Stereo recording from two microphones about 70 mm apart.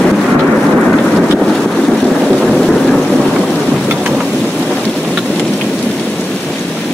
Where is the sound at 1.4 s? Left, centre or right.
Centre.